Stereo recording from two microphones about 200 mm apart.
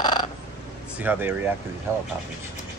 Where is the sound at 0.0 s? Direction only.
20° left (ahead or behind).